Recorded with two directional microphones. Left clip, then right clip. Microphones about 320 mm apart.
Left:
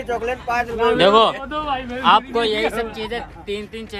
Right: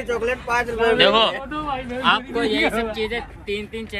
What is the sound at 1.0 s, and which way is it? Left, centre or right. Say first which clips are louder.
Speech: left 4 dB; centre.